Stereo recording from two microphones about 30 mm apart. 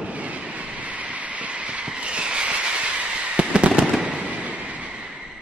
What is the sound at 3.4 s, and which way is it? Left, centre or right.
Fireworks, right.